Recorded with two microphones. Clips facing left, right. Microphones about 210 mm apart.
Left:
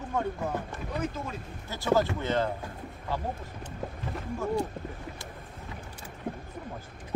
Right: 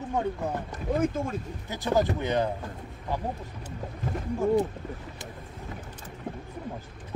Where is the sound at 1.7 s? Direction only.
15° right (ahead or behind).